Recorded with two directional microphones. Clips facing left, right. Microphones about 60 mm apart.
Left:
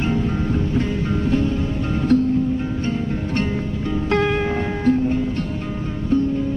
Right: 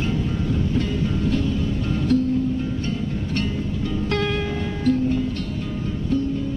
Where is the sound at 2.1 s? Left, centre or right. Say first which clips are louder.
Left 3 dB; left.